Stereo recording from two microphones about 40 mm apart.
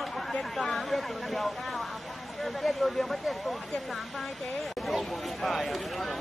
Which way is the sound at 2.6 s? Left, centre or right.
Centre.